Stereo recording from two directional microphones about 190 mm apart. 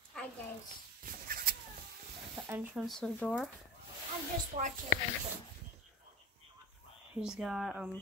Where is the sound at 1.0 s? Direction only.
50° right (ahead or behind).